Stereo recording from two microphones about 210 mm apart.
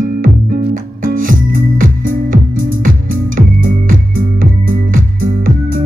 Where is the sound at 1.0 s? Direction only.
40° right (ahead or behind).